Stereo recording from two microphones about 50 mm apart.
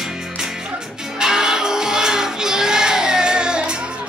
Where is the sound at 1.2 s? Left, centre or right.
Centre.